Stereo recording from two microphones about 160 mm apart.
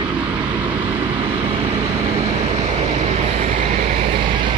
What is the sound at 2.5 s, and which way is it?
Vehicle, 40° right (ahead or behind).